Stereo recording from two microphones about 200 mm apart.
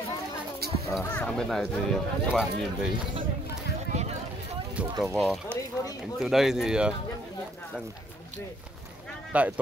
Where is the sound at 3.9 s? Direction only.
35° right (ahead or behind).